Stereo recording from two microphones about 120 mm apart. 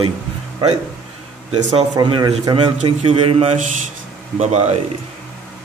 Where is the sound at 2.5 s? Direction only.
50° right (ahead or behind).